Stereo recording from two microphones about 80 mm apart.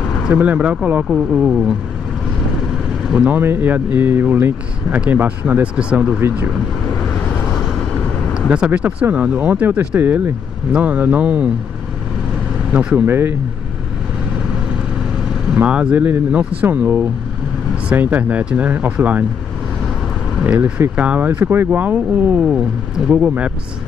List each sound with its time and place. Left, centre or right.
0.3 s speech: centre
3.3 s speech: right
8.4 s speech: centre
12.7 s speech: right
15.5 s speech: centre
20.4 s speech: centre